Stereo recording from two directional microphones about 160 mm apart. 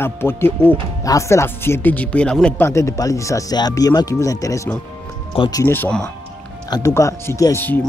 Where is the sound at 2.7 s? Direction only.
20° left (ahead or behind).